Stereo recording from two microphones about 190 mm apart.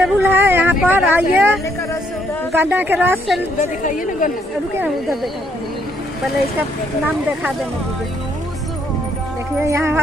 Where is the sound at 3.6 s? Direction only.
45° left (ahead or behind).